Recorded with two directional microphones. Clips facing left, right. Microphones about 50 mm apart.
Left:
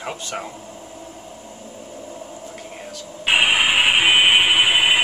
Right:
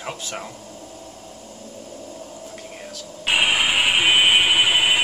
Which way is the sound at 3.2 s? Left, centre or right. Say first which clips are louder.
Left 2 dB; centre.